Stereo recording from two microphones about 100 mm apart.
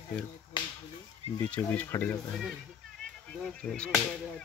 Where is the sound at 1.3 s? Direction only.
20° left (ahead or behind).